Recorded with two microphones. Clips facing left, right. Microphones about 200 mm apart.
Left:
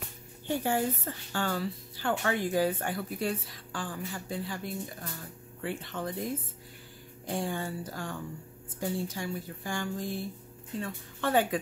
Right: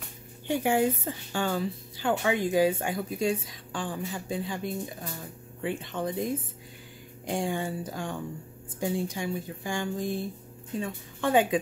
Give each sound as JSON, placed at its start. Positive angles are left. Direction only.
{"t": 0.5, "sound": "a woman's voice", "side_deg": -15}